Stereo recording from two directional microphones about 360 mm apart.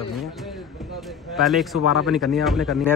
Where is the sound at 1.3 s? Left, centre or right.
Centre.